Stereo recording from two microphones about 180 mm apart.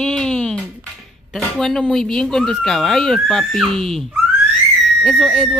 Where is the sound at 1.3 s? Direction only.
5° left (ahead or behind).